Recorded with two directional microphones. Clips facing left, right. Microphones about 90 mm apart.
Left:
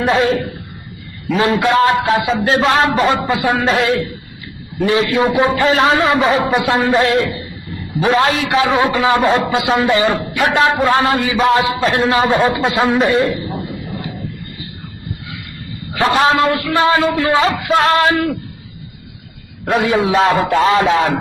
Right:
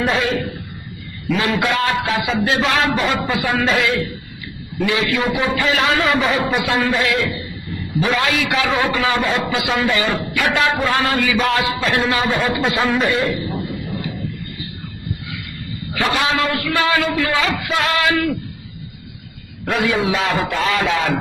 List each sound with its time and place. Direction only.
0.0 s a man's voice: 35° left (ahead or behind)
12.0 s a man's voice: 35° left (ahead or behind)
15.9 s a man's voice: 35° left (ahead or behind)
19.7 s a man's voice: 35° left (ahead or behind)